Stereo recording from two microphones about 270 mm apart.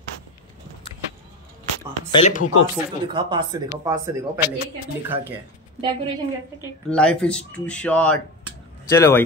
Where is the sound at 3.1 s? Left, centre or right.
Centre.